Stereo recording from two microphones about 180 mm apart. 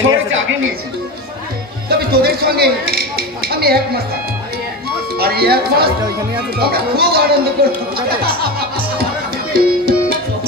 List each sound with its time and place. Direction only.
0.0 s a woman's voice: 90° right
1.9 s speech: 60° right (ahead or behind)
5.1 s speech: 60° right (ahead or behind)
9.5 s music: 60° right (ahead or behind)